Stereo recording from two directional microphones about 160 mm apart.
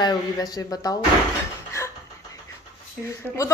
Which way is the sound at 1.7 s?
20° left (ahead or behind).